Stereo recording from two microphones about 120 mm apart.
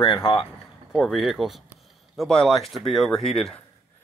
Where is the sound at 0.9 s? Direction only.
Centre (ahead or behind).